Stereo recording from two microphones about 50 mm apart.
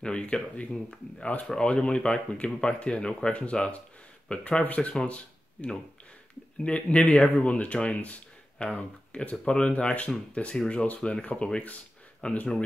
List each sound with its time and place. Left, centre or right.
0.0 s speech: left